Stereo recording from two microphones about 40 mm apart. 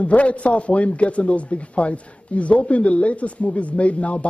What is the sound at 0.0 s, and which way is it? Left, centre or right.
A man's voice, left.